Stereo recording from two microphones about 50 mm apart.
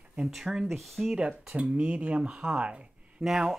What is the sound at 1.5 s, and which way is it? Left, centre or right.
Speech, right.